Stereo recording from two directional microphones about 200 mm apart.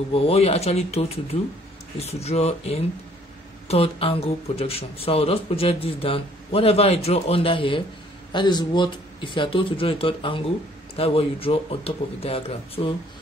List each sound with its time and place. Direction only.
0.1 s speech: 30° left (ahead or behind)